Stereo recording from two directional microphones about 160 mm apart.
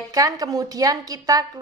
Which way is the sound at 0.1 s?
20° right (ahead or behind).